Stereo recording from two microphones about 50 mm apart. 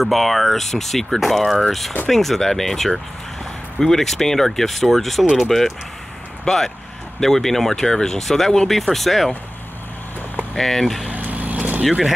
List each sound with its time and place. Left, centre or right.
0.0 s speech: centre
10.5 s speech: centre
11.1 s vehicle: right